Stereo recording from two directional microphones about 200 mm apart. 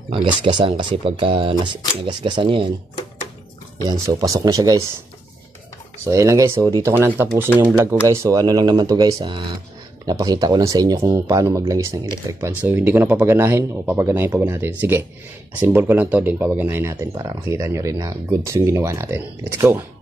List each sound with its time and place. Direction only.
0.1 s speech: 25° right (ahead or behind)
3.8 s speech: 15° right (ahead or behind)
6.0 s speech: 15° right (ahead or behind)
7.4 s speech: 10° left (ahead or behind)
7.7 s speech: 10° right (ahead or behind)